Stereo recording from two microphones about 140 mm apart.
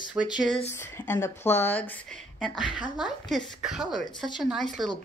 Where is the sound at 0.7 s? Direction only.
15° left (ahead or behind).